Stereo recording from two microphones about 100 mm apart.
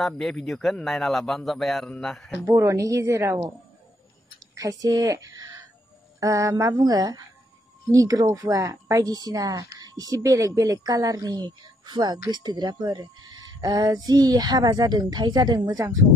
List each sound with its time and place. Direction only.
0.0 s a man's voice: 5° left (ahead or behind)
2.6 s speech: 30° right (ahead or behind)
4.6 s speech: 40° right (ahead or behind)